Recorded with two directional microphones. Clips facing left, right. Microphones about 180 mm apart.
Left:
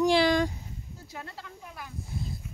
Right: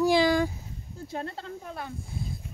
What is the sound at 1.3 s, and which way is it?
Speech, 60° right (ahead or behind).